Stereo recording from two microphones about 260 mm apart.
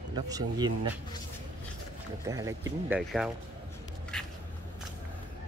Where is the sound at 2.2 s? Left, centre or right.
Centre.